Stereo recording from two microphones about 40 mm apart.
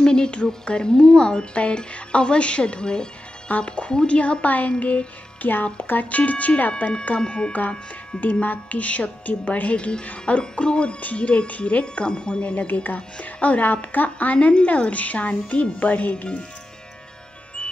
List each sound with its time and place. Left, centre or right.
0.0 s music: left
0.7 s a woman's voice: left
3.4 s a woman's voice: left
4.2 s a woman's voice: left
7.2 s a woman's voice: left
8.2 s a woman's voice: left
12.8 s a woman's voice: left